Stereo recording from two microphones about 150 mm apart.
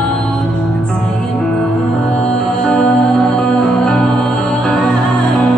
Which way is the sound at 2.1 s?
5° left (ahead or behind).